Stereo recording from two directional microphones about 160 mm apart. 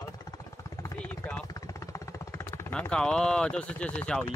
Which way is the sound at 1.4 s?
20° left (ahead or behind).